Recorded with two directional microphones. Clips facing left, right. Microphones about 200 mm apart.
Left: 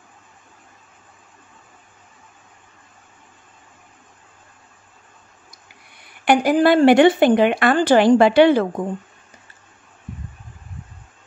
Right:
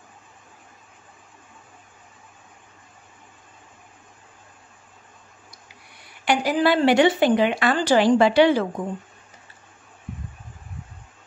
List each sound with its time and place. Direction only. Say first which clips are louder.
6.2 s speech: left 5 dB; 50° left (ahead or behind)